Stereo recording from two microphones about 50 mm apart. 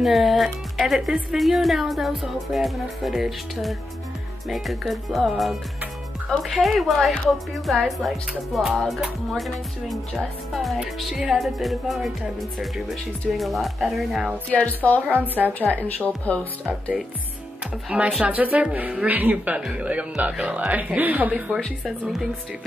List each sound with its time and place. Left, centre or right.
0.0 s speech: centre
14.5 s speech: left
15.0 s a woman's voice: right
15.7 s speech: left
17.8 s speech: right